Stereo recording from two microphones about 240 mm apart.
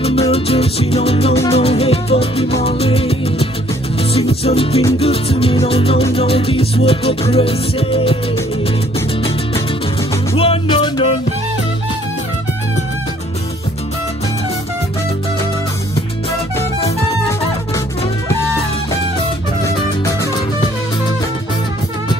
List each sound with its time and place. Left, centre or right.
0.0 s music: left
10.3 s music: left
19.6 s music: centre